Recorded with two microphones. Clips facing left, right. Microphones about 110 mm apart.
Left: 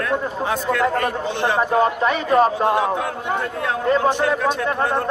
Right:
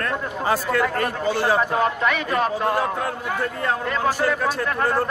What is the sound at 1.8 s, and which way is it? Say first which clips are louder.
Speech: left 3 dB; 35° left (ahead or behind).